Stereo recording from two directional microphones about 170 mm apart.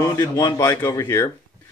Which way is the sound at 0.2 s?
25° left (ahead or behind).